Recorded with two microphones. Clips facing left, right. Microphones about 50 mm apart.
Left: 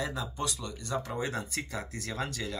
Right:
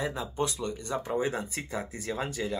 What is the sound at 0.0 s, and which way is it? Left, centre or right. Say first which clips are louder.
Speech: right 3 dB; right.